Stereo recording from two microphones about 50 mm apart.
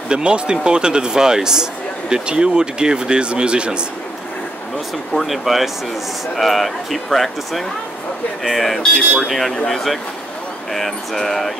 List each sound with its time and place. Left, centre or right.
0.1 s speech: centre
5.1 s speech: centre
8.9 s speech: centre
9.3 s speech: centre